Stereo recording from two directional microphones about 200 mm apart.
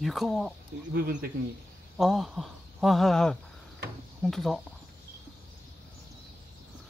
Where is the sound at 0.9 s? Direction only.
50° right (ahead or behind).